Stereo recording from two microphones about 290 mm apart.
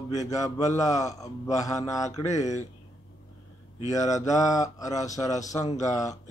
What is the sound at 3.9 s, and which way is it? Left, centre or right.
A man's voice, centre.